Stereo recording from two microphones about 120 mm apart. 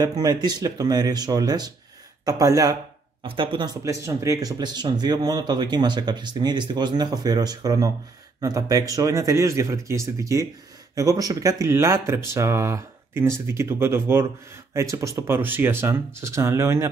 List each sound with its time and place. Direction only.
0.0 s speech: 35° right (ahead or behind)
3.3 s speech: 45° right (ahead or behind)
3.8 s speech: 25° right (ahead or behind)